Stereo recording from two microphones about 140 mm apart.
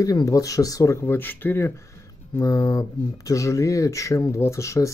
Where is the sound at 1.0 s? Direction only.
15° left (ahead or behind).